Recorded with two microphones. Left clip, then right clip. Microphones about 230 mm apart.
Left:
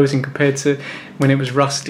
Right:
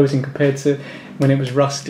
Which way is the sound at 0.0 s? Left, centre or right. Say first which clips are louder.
Left 1 dB; centre.